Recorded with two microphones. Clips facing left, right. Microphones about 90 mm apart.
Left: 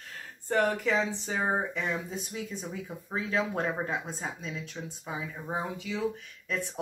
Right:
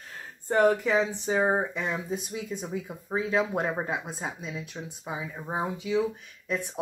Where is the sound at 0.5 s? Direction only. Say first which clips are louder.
Right 4 dB; 20° right (ahead or behind).